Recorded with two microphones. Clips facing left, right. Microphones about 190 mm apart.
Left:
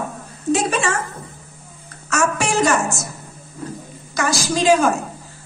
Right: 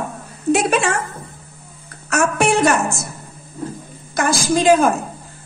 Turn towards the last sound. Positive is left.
turn(degrees=-55)  # may be behind; listen again after turning